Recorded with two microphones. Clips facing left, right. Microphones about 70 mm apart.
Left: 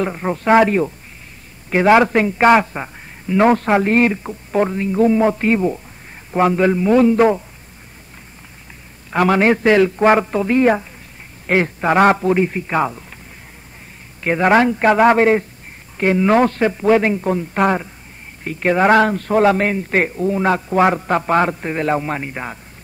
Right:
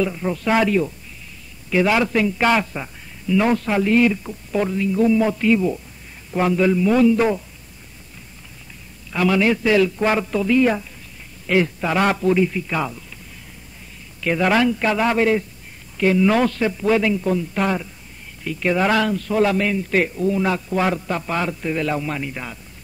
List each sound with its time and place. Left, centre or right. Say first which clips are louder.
0.0 s a man's voice: left 2 dB; left
9.1 s a man's voice: left 4 dB; left
14.2 s a man's voice: left 4 dB; left